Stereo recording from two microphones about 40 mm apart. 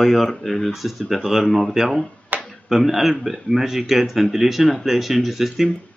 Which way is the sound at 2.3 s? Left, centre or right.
Right.